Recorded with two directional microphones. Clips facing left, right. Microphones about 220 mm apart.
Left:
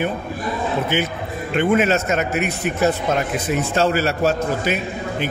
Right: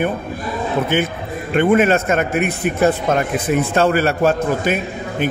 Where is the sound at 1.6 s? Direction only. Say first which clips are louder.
Right 3 dB; 55° right (ahead or behind).